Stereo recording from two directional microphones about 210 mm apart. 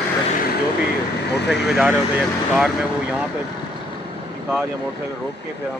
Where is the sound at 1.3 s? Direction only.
55° left (ahead or behind).